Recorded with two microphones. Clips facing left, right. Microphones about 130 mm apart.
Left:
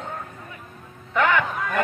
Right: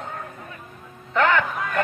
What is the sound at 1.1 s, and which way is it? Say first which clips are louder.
Speech: right 1 dB; 10° left (ahead or behind).